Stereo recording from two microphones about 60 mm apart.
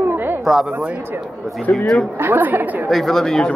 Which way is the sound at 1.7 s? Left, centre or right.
Left.